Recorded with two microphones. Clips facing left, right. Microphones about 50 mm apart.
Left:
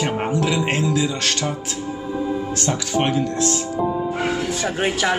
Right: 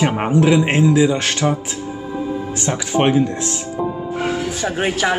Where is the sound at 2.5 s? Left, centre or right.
Right.